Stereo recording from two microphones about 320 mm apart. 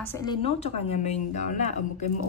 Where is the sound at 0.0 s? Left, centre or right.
Centre.